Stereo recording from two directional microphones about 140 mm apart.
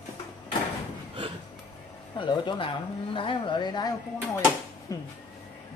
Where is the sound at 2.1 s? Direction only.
35° left (ahead or behind).